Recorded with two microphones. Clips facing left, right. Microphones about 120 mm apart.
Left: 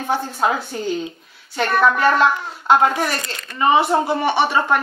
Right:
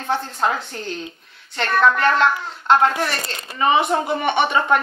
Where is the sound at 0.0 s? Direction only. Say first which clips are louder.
Left 2 dB; 10° left (ahead or behind).